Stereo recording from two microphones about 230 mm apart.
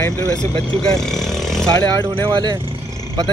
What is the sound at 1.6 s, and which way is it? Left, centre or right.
Speech, centre.